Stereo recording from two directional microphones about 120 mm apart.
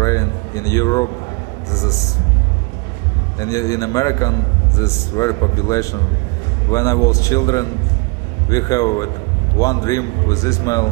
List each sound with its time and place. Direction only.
0.0 s a sound: 25° left (ahead or behind)
1.7 s a man's voice: 25° left (ahead or behind)
3.3 s a man's voice: 25° left (ahead or behind)